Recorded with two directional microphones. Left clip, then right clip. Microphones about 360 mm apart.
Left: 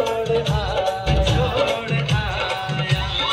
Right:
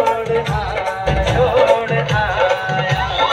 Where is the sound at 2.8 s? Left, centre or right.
Centre.